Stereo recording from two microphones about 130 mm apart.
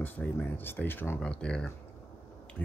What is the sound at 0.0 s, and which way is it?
Speech, 15° left (ahead or behind).